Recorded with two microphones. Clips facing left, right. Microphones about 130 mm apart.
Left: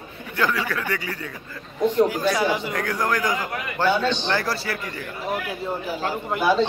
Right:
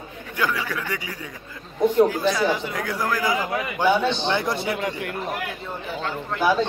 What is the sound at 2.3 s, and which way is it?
Speech, 10° left (ahead or behind).